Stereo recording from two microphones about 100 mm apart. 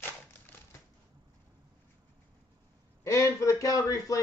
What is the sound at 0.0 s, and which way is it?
Typewriter, 20° left (ahead or behind).